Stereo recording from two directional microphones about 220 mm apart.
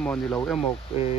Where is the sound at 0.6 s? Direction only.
25° left (ahead or behind).